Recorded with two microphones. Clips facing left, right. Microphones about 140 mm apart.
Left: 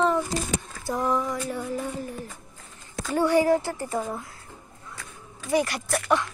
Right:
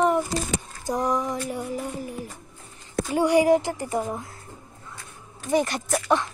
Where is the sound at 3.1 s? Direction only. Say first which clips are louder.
Right 2 dB; 15° right (ahead or behind).